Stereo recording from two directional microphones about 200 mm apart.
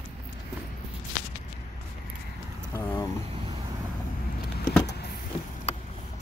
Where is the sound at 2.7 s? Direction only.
15° left (ahead or behind).